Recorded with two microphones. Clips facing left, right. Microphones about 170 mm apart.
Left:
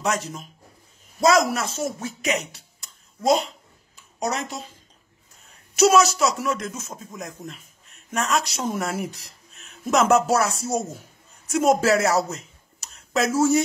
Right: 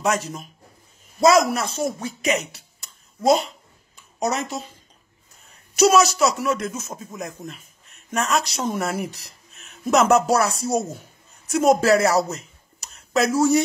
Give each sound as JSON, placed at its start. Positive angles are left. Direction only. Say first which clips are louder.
{"t": 0.0, "sound": "a man's voice", "louder": "right 3 dB", "side_deg": -5}
{"t": 3.9, "sound": "a sound", "louder": "right 3 dB", "side_deg": 0}
{"t": 5.8, "sound": "speech", "louder": "right 1 dB", "side_deg": 0}